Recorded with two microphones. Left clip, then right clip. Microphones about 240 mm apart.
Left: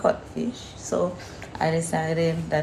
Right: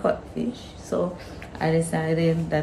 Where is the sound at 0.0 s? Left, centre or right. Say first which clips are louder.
Left 1 dB; centre.